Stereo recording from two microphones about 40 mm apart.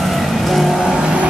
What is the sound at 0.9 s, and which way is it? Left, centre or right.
Vehicle, right.